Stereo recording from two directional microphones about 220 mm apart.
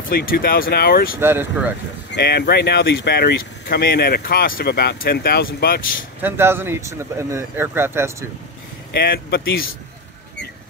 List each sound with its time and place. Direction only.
0.1 s speech: 45° left (ahead or behind)
1.2 s speech: 10° right (ahead or behind)
2.1 s speech: 50° left (ahead or behind)
6.2 s speech: 10° right (ahead or behind)
8.9 s speech: 45° left (ahead or behind)